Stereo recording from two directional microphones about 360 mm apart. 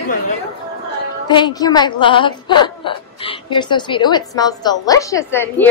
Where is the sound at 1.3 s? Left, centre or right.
Centre.